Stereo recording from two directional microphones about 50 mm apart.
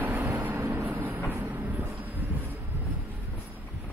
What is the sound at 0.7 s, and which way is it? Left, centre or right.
Train, right.